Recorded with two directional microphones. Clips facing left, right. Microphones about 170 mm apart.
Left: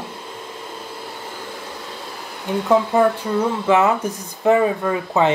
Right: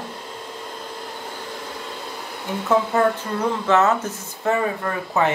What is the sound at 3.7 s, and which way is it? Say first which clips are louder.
Speech: left 1 dB; 10° left (ahead or behind).